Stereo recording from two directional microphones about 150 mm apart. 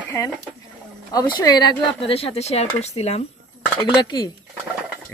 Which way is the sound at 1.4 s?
30° left (ahead or behind).